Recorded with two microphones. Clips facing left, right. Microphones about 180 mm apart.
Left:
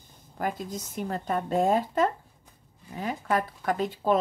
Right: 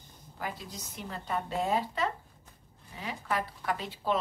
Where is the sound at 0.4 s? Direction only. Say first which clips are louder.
Left 8 dB; 50° left (ahead or behind).